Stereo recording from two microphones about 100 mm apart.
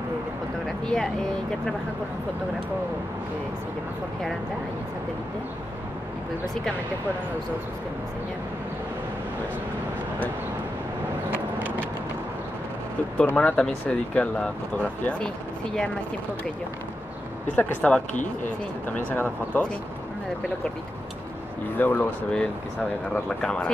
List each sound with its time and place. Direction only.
0.8 s speech: 5° left (ahead or behind)
11.2 s vehicle: 20° right (ahead or behind)
13.4 s speech: 10° left (ahead or behind)
17.6 s speech: 10° left (ahead or behind)
21.7 s speech: 20° left (ahead or behind)
22.3 s speech: 10° left (ahead or behind)